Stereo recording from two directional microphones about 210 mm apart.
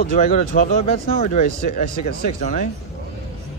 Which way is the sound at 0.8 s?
30° left (ahead or behind).